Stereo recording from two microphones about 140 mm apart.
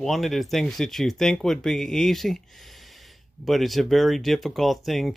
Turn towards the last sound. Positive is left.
turn(degrees=0)  # may be behind; listen again after turning